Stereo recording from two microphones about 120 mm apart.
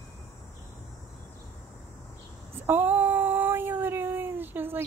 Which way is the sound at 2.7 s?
15° right (ahead or behind).